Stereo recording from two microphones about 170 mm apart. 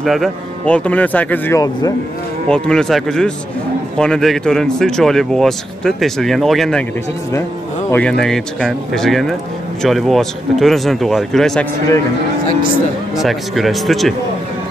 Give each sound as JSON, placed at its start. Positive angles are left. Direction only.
{"t": 0.0, "sound": "speech", "side_deg": 0}
{"t": 1.6, "sound": "speech", "side_deg": 20}
{"t": 2.4, "sound": "speech", "side_deg": 5}
{"t": 7.9, "sound": "speech", "side_deg": 5}
{"t": 13.1, "sound": "speech", "side_deg": 0}